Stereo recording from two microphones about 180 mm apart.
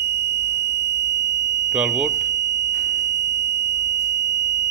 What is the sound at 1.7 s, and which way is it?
Speech, 5° right (ahead or behind).